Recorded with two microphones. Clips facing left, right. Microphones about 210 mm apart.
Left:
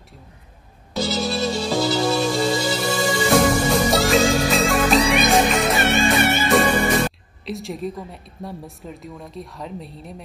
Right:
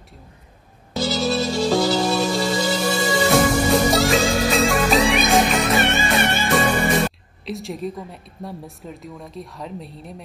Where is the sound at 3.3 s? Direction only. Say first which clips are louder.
Left 1 dB; centre (ahead or behind).